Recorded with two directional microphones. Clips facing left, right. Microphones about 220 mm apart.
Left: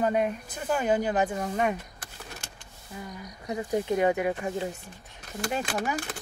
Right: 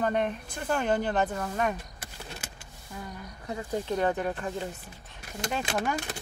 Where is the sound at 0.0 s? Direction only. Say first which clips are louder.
Left 2 dB; 5° left (ahead or behind).